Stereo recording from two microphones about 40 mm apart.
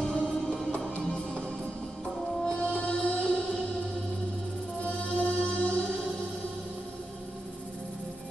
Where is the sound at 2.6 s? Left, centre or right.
Left.